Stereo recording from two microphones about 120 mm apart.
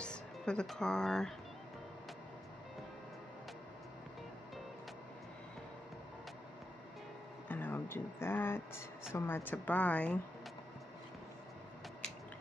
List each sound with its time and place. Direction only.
0.0 s speech: 5° left (ahead or behind)
7.4 s speech: 15° left (ahead or behind)